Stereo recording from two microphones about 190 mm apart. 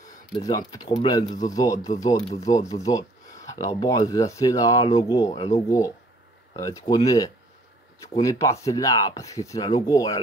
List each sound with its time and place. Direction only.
0.3 s speech: 20° left (ahead or behind)
5.3 s speech: 35° left (ahead or behind)
5.7 s speech: 15° left (ahead or behind)